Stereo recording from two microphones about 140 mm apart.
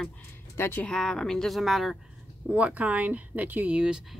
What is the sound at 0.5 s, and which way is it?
Speech, 15° left (ahead or behind).